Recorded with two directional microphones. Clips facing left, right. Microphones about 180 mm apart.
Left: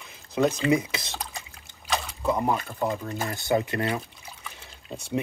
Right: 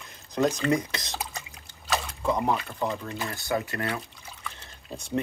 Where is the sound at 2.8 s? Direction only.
5° left (ahead or behind).